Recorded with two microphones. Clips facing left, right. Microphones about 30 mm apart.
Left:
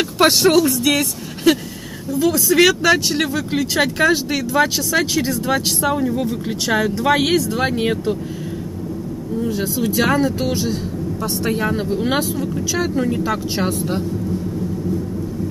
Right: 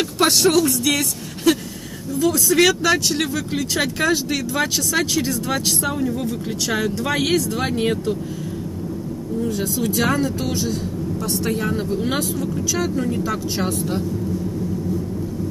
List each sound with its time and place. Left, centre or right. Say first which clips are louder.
0.2 s speech: left 3 dB; centre
1.5 s a sound: left 2 dB; centre
2.1 s speech: left 2 dB; centre
9.4 s speech: left 2 dB; centre